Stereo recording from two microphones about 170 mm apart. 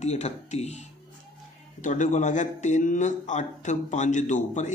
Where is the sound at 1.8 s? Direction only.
45° left (ahead or behind).